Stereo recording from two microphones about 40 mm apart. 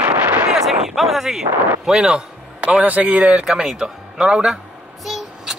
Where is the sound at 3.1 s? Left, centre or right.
Right.